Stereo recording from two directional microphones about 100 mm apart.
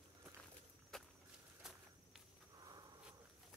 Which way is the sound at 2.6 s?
40° right (ahead or behind).